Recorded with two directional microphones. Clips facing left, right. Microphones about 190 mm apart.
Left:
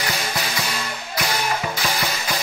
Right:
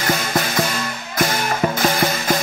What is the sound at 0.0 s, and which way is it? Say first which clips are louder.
Music: right 6 dB; 50° right (ahead or behind).